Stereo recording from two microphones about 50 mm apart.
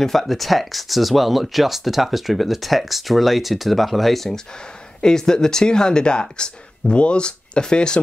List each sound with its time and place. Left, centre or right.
0.0 s speech: centre